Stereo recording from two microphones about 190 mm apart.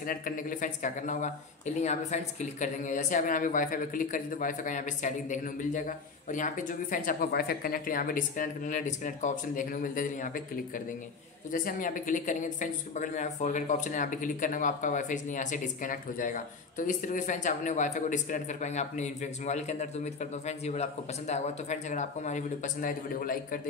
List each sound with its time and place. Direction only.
0.0 s speech: 45° left (ahead or behind)